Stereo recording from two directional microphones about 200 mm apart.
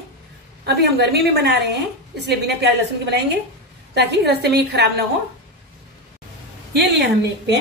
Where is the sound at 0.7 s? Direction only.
55° right (ahead or behind).